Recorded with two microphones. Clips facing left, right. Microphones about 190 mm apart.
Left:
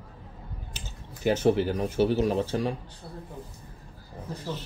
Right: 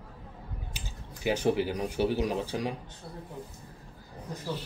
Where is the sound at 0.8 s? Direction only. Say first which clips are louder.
Left 1 dB; 10° right (ahead or behind).